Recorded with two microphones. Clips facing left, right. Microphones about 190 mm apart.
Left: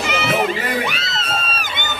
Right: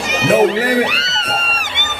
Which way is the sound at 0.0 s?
40° right (ahead or behind).